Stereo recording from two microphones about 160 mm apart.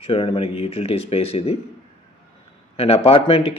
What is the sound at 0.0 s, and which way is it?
Speech, 35° left (ahead or behind).